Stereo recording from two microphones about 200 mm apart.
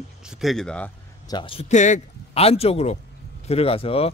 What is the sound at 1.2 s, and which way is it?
Speech, 25° left (ahead or behind).